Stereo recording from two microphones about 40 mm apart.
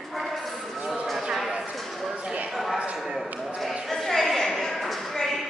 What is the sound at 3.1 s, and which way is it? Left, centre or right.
Basketball bounce, centre.